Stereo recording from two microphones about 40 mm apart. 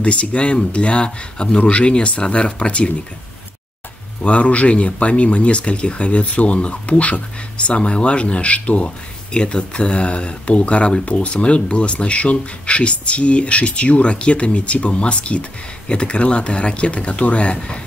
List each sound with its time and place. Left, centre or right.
0.0 s speech: left
4.2 s speech: left